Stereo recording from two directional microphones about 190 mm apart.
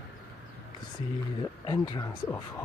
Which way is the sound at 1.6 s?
25° left (ahead or behind).